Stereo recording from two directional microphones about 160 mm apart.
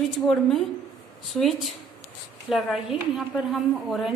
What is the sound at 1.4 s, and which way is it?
A woman's voice, centre (ahead or behind).